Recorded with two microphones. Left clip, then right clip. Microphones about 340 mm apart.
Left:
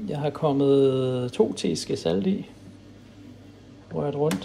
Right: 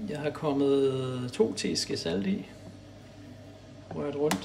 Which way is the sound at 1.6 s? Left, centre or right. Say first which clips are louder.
Left 3 dB; left.